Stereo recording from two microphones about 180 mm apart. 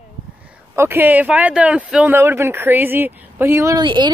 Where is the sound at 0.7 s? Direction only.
15° right (ahead or behind).